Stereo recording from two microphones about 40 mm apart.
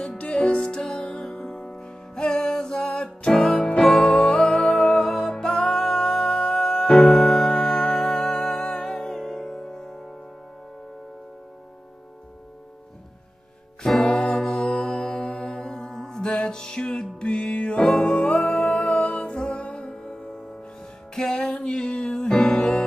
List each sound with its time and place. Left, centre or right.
0.2 s music: left
4.7 s music: centre
7.1 s music: centre
14.0 s music: left
14.5 s mantra: centre
20.0 s music: left